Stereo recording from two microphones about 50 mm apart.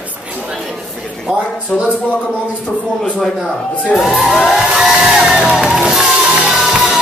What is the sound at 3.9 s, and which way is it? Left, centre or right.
Music, centre.